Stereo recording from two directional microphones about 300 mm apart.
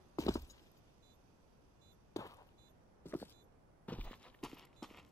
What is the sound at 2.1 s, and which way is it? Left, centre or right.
Chop, centre.